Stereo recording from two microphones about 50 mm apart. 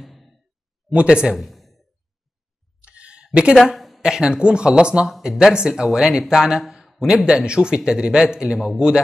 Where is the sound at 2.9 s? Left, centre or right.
Right.